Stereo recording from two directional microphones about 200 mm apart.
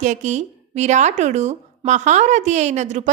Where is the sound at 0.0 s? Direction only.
35° right (ahead or behind).